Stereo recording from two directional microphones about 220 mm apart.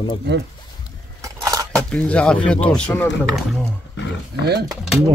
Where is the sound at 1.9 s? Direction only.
5° left (ahead or behind).